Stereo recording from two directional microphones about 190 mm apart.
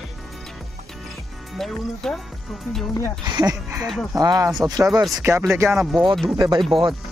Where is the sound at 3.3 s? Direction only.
20° right (ahead or behind).